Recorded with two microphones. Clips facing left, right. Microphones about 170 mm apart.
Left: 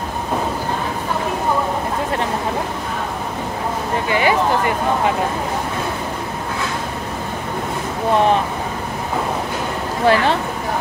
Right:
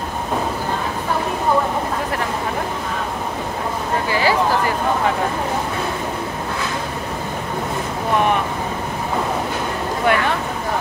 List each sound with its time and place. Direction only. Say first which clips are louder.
4.1 s speech: left 1 dB; 20° left (ahead or behind)
10.0 s speech: left 3 dB; 30° left (ahead or behind)